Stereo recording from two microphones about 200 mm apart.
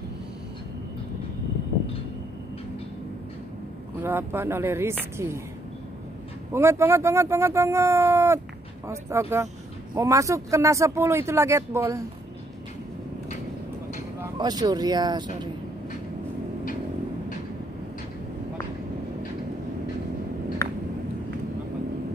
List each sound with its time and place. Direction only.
4.0 s speech: 10° right (ahead or behind)
6.5 s speech: 10° right (ahead or behind)
14.2 s speech: 20° right (ahead or behind)
20.6 s a sound: 15° left (ahead or behind)